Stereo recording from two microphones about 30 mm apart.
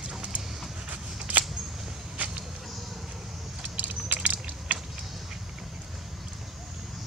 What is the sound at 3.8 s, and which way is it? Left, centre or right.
Keys jangling, right.